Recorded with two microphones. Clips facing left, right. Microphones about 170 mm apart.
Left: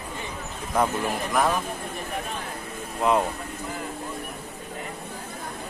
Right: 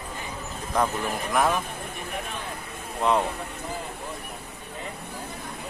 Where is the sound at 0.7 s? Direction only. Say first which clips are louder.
Left 2 dB; 5° left (ahead or behind).